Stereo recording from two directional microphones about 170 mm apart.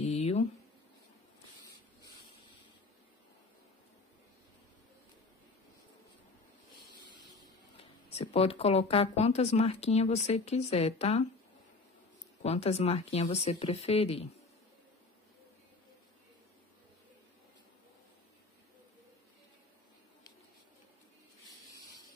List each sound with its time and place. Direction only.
0.0 s a sound: 35° left (ahead or behind)
7.7 s speech: 35° left (ahead or behind)
12.4 s speech: 40° left (ahead or behind)